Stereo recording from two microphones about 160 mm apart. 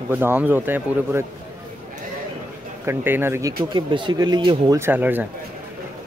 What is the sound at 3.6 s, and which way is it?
Speech, 30° right (ahead or behind).